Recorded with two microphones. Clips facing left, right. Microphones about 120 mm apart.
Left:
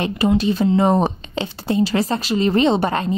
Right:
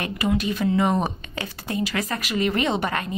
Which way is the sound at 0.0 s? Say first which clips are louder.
Left 6 dB; 30° left (ahead or behind).